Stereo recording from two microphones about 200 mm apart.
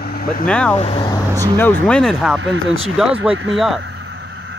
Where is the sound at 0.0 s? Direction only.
50° left (ahead or behind).